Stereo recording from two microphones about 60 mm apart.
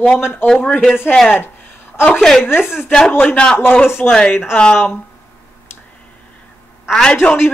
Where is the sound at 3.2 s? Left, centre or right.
Left.